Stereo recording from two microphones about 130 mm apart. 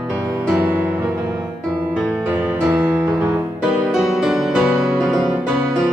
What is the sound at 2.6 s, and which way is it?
Music, 20° right (ahead or behind).